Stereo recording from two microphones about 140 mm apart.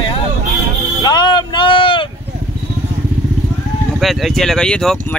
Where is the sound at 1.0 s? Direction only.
30° left (ahead or behind).